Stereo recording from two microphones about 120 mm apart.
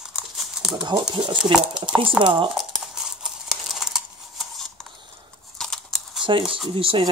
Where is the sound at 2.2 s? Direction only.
45° right (ahead or behind).